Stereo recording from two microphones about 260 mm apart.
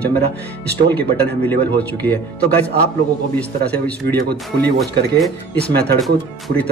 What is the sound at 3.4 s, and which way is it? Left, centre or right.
Speech, centre.